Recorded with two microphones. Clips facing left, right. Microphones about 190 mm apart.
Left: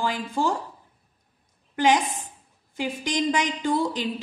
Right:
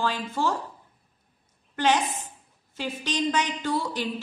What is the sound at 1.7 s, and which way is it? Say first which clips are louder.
A woman's voice: left 3 dB; 15° left (ahead or behind).